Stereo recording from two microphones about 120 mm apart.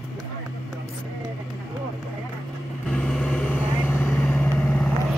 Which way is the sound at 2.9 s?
5° left (ahead or behind).